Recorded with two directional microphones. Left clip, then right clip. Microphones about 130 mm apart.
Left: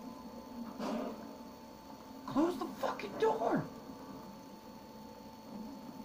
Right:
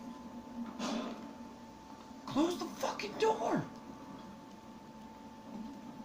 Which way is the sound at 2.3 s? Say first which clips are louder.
Even; 10° right (ahead or behind).